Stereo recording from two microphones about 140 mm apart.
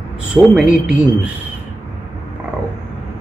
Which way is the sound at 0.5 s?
5° right (ahead or behind).